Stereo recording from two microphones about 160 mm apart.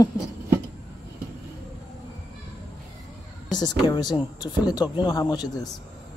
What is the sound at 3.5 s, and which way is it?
Speech, 25° left (ahead or behind).